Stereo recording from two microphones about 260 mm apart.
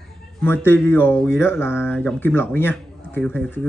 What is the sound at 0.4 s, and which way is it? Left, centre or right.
Speech, centre.